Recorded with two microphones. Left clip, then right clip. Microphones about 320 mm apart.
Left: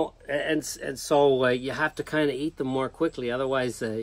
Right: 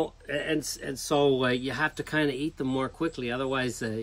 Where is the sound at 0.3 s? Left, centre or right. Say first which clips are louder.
Left 4 dB; centre.